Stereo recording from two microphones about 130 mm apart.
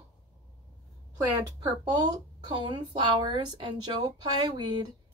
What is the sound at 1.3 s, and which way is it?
Speech, 30° right (ahead or behind).